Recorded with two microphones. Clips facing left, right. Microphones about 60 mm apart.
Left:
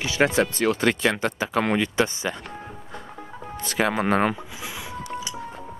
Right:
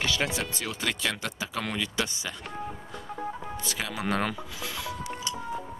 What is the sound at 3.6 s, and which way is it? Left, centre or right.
Speech, left.